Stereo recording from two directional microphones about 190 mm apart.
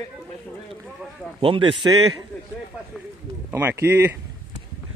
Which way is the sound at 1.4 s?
25° right (ahead or behind).